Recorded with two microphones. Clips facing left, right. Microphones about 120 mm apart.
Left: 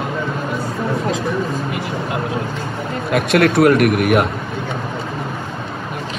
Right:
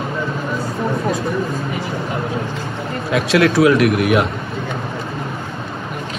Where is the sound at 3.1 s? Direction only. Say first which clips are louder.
Even; 55° left (ahead or behind).